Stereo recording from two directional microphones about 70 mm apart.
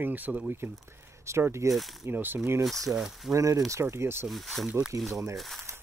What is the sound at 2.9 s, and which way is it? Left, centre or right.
Speech, centre.